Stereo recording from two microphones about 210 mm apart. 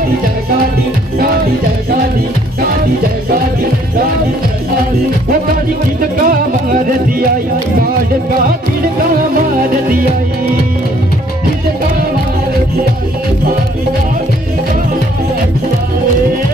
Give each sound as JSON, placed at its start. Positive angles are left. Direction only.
{"t": 5.9, "sound": "music", "side_deg": -45}